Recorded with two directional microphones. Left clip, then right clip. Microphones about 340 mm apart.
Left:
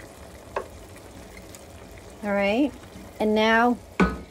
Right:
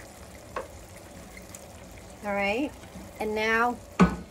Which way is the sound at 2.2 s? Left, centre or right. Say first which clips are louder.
Left 5 dB; left.